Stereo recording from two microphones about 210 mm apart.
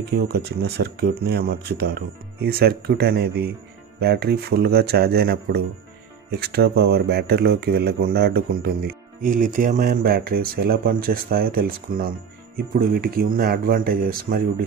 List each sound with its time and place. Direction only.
0.1 s speech: 50° right (ahead or behind)